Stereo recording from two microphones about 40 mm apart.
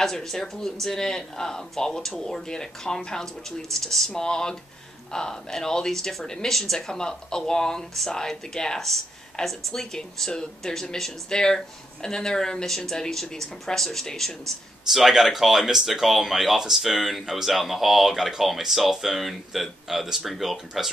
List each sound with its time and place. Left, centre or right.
0.1 s speech: centre
14.9 s speech: centre